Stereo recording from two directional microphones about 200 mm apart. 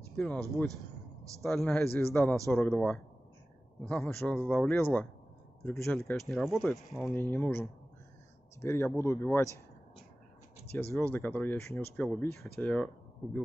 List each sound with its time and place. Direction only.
0.1 s speech: 5° left (ahead or behind)
10.8 s speech: 10° left (ahead or behind)